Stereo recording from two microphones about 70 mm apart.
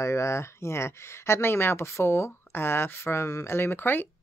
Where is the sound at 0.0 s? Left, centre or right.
Left.